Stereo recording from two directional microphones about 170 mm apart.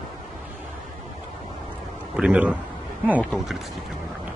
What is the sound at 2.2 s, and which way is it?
Speech, 5° right (ahead or behind).